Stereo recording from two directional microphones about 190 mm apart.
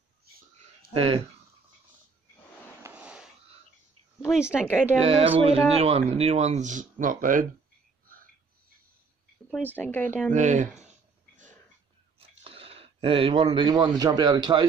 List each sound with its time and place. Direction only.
0.9 s speech: 30° right (ahead or behind)
2.8 s a sound: 5° right (ahead or behind)
4.5 s speech: 10° left (ahead or behind)
5.0 s speech: 30° right (ahead or behind); by 7.4 s 45° right (ahead or behind)
9.8 s speech: 10° left (ahead or behind)
10.3 s speech: 40° right (ahead or behind)
12.2 s speech: 30° right (ahead or behind)